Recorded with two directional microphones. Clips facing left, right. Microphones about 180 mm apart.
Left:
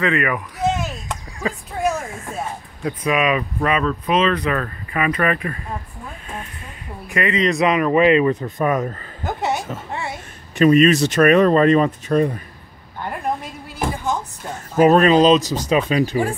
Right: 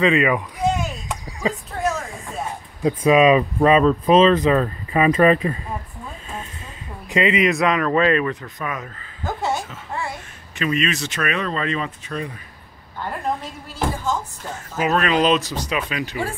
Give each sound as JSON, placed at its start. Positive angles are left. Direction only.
{"t": 0.0, "sound": "speech", "side_deg": -15}
{"t": 0.6, "sound": "chop", "side_deg": 0}
{"t": 1.7, "sound": "a sound", "side_deg": 10}
{"t": 2.8, "sound": "speech", "side_deg": -25}
{"t": 7.1, "sound": "a man's voice", "side_deg": -20}
{"t": 7.6, "sound": "speech", "side_deg": 15}
{"t": 8.6, "sound": "speech", "side_deg": 40}
{"t": 9.2, "sound": "a sound", "side_deg": 20}
{"t": 10.6, "sound": "speech", "side_deg": 40}
{"t": 13.4, "sound": "a sound", "side_deg": 15}
{"t": 14.8, "sound": "speech", "side_deg": 40}